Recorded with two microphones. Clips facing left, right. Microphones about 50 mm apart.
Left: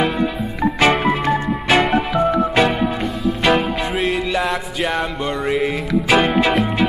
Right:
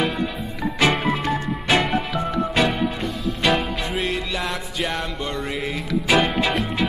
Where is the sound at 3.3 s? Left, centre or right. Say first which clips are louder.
Left 5 dB; centre.